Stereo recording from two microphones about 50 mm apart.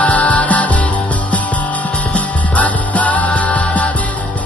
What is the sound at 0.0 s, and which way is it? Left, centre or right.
Music, left.